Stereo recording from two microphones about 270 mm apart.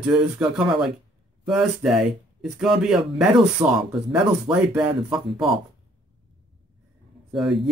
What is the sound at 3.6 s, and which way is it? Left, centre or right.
Speech, centre.